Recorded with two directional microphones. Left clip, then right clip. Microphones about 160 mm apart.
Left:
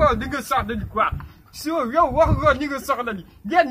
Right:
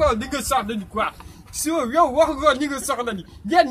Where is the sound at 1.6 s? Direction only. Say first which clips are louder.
Right 1 dB; 15° right (ahead or behind).